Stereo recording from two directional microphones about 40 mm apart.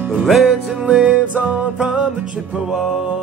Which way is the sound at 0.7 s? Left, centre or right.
Right.